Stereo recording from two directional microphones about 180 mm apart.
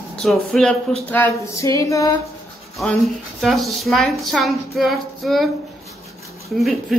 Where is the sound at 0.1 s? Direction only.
Centre (ahead or behind); by 2.0 s 15° left (ahead or behind).